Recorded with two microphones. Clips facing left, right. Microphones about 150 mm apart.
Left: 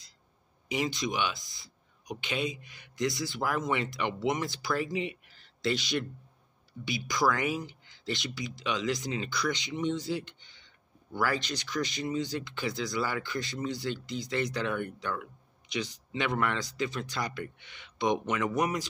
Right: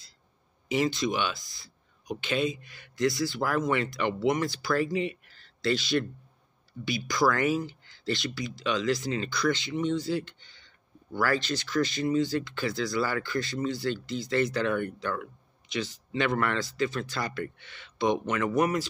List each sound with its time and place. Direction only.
0.7 s speech: 15° left (ahead or behind)